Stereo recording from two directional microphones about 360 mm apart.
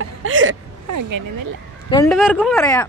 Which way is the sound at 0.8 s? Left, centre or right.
Right.